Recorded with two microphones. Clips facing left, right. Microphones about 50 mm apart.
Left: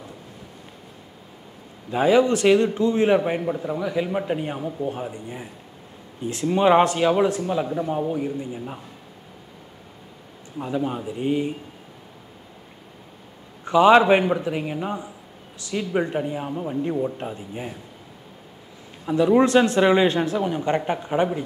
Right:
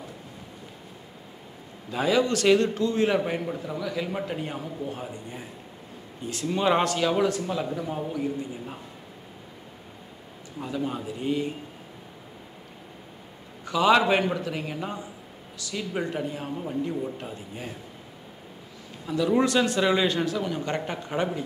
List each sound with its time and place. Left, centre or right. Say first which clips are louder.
1.9 s a man's voice: left 6 dB; left
8.1 s a man's voice: left 3 dB; left
10.6 s a man's voice: left 4 dB; centre
13.7 s a man's voice: left 6 dB; left
19.0 s a man's voice: left 6 dB; left